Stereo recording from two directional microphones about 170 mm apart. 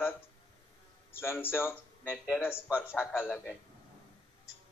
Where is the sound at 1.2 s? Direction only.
15° left (ahead or behind).